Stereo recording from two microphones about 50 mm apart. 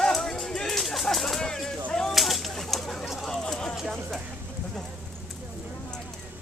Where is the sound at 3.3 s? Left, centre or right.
Centre.